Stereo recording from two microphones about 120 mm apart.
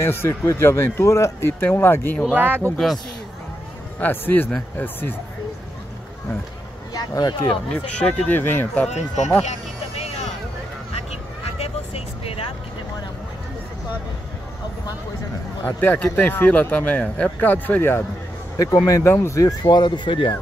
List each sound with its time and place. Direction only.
0.0 s speech: 20° left (ahead or behind)
2.3 s speech: 15° right (ahead or behind)
4.0 s speech: 15° left (ahead or behind)
6.9 s speech: 35° left (ahead or behind)
7.7 s speech: 10° left (ahead or behind)
8.9 s speech: 75° left (ahead or behind)
9.4 s a sound: 65° left (ahead or behind)
11.4 s vehicle: 60° left (ahead or behind)
15.6 s speech: 15° left (ahead or behind)
18.9 s speech: 25° left (ahead or behind); by 20.3 s 45° left (ahead or behind)